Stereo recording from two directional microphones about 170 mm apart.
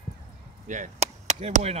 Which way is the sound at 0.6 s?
45° right (ahead or behind).